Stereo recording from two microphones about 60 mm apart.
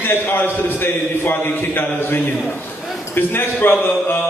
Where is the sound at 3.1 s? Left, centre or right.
Left.